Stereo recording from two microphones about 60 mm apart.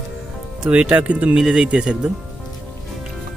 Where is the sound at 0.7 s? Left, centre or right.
Right.